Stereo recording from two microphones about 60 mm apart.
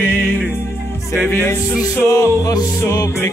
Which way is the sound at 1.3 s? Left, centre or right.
Left.